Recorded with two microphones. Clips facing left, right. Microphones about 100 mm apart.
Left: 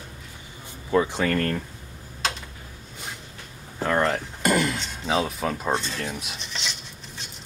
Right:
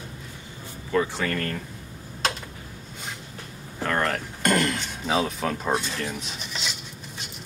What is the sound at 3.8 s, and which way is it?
Speech, 15° left (ahead or behind).